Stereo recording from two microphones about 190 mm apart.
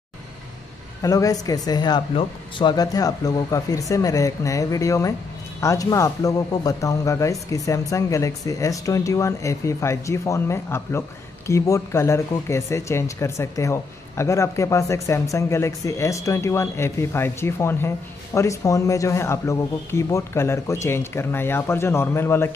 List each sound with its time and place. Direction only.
1.0 s speech: 20° left (ahead or behind)